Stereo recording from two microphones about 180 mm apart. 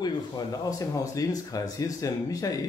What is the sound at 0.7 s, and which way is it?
Speech, 20° left (ahead or behind).